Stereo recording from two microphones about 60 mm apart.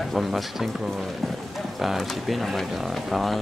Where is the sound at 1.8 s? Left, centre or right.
Centre.